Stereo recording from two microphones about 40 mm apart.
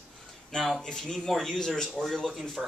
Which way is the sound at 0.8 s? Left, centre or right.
Centre.